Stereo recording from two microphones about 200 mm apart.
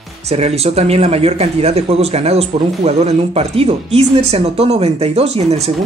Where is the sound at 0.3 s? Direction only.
30° right (ahead or behind).